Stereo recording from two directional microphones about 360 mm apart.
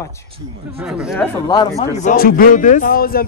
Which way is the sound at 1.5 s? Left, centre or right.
Centre.